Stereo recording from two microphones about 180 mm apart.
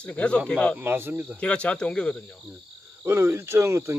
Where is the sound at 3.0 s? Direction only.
15° right (ahead or behind).